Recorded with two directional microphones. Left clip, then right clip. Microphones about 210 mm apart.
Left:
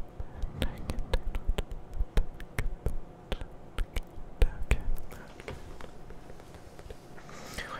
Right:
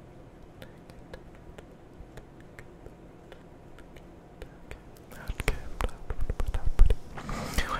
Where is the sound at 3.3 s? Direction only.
70° left (ahead or behind).